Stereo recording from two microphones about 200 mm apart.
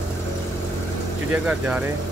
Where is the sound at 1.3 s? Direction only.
5° right (ahead or behind).